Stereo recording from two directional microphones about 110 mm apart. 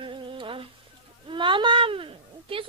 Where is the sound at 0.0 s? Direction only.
50° right (ahead or behind).